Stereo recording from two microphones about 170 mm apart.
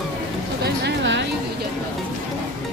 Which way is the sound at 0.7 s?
85° right.